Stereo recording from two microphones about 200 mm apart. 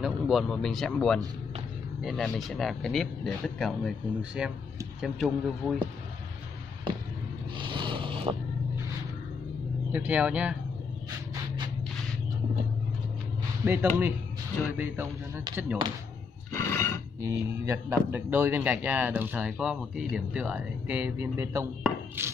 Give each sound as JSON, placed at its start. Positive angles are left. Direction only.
{"t": 0.0, "sound": "speech", "side_deg": 0}
{"t": 7.5, "sound": "a sound", "side_deg": -25}
{"t": 9.9, "sound": "a man's voice", "side_deg": -5}
{"t": 14.8, "sound": "a man's voice", "side_deg": -10}
{"t": 16.5, "sound": "a sound", "side_deg": 15}
{"t": 17.2, "sound": "a man's voice", "side_deg": -15}